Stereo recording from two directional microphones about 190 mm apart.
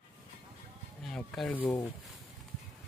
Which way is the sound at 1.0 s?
Centre (ahead or behind).